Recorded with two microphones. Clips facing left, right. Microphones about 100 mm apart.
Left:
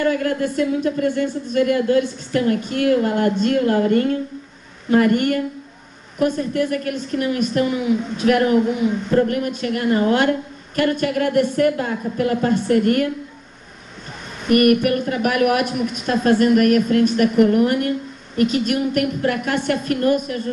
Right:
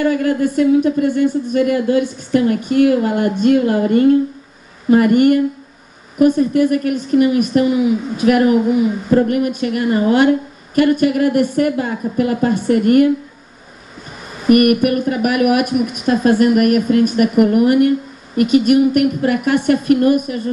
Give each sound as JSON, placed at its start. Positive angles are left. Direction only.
{"t": 0.0, "sound": "a woman's voice", "side_deg": -10}
{"t": 14.4, "sound": "a woman's voice", "side_deg": -10}